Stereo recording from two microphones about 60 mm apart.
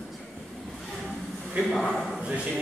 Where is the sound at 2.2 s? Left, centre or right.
Centre.